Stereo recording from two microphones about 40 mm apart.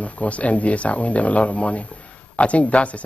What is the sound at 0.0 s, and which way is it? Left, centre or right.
Speech, left.